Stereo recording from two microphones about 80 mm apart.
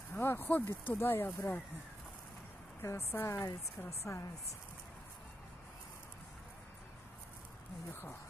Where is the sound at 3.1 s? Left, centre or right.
Left.